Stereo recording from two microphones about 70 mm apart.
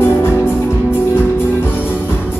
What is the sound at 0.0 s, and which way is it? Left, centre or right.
Music, left.